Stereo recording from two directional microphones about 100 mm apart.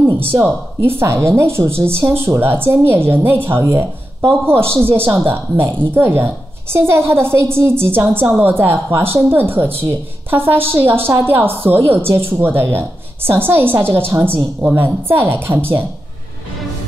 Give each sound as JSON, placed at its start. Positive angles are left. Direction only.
{"t": 0.3, "sound": "a woman's voice", "side_deg": -20}